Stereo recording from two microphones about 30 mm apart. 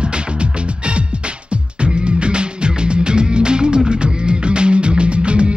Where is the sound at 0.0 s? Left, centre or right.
Right.